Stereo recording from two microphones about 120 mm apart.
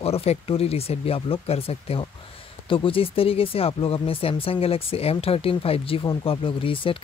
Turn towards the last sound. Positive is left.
turn(degrees=45)  # may be behind; listen again after turning